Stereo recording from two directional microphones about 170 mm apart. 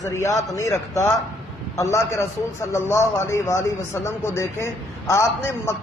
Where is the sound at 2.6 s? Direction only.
15° left (ahead or behind).